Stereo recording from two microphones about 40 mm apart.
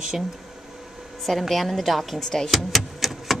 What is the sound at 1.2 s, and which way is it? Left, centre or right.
Speech, centre.